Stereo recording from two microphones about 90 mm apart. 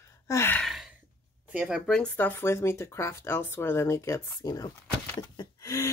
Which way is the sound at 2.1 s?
20° left (ahead or behind).